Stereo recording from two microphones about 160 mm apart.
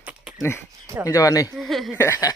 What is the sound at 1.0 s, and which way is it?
Speech, 20° left (ahead or behind).